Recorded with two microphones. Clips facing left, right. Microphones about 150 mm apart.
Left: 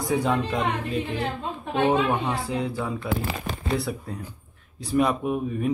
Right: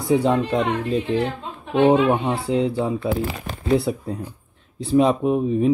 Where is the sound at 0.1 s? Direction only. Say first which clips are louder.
Right 6 dB; 25° right (ahead or behind).